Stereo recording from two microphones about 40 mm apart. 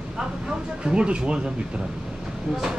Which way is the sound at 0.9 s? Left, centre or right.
Right.